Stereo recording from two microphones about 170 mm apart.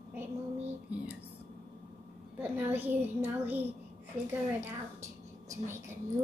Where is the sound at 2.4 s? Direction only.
10° right (ahead or behind).